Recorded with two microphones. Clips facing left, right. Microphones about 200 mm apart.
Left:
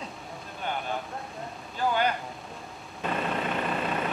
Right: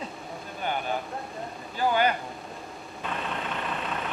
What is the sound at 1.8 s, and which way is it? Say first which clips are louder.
Speech: right 2 dB; 5° right (ahead or behind).